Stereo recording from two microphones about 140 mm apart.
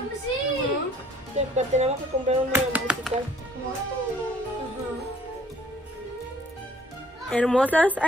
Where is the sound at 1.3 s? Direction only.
50° right (ahead or behind).